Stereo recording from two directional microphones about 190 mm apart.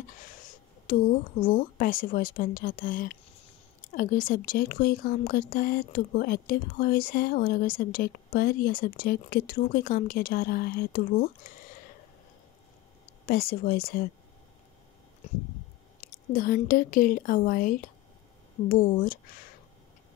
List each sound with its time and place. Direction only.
0.8 s speech: 45° left (ahead or behind)
13.3 s speech: 50° left (ahead or behind)
16.0 s speech: 45° left (ahead or behind)